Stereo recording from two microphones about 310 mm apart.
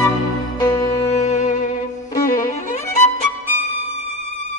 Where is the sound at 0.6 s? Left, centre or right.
Centre.